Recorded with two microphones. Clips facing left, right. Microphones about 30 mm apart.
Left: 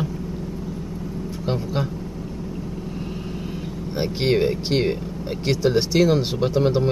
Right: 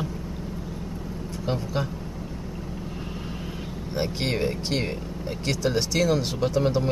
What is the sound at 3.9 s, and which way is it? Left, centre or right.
Speech, centre.